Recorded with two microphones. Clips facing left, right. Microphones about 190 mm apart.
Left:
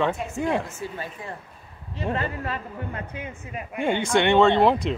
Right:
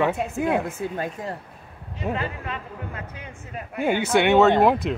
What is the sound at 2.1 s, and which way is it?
Speech, 35° left (ahead or behind).